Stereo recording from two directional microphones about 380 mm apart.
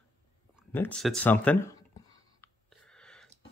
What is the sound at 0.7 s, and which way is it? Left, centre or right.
Speech, centre.